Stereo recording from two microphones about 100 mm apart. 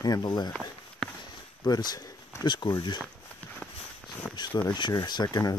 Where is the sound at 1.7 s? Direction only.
40° left (ahead or behind).